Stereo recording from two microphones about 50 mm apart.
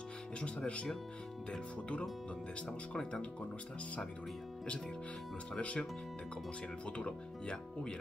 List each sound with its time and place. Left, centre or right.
0.4 s speech: left
5.6 s speech: left
6.9 s speech: left